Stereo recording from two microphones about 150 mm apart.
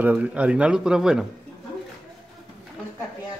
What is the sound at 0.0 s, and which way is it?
Speech, 10° right (ahead or behind).